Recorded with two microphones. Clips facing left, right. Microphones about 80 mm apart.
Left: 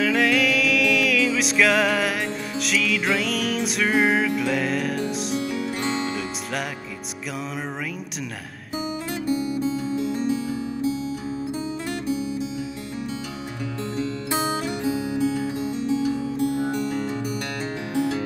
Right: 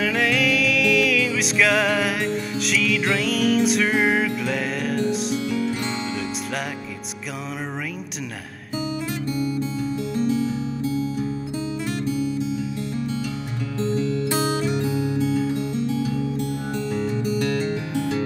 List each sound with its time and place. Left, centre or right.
0.0 s music: centre
14.3 s music: centre